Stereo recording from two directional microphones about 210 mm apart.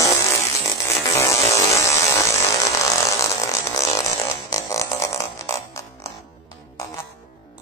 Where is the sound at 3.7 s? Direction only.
15° left (ahead or behind).